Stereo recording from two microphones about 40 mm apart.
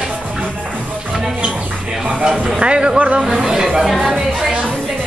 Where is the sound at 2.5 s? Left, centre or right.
Right.